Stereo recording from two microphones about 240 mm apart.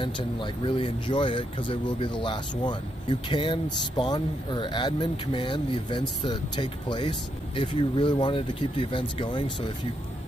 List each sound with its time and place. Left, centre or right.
0.0 s speech: left